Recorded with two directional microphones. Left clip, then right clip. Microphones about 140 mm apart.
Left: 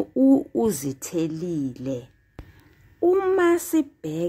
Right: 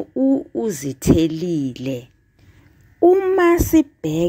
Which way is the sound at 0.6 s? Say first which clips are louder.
Right 6 dB; 5° right (ahead or behind).